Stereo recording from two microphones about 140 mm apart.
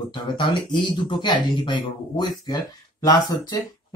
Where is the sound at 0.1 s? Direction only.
35° left (ahead or behind).